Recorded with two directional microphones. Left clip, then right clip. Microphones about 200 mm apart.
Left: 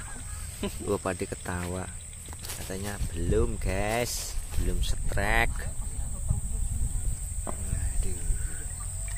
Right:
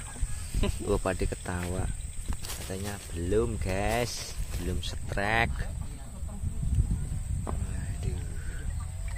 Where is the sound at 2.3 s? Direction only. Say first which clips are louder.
Even; 45° right (ahead or behind).